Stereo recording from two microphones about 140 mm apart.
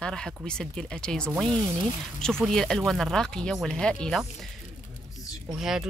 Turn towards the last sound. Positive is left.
turn(degrees=-5)  # may be behind; listen again after turning